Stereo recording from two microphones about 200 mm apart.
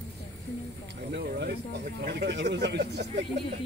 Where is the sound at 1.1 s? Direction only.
55° right (ahead or behind).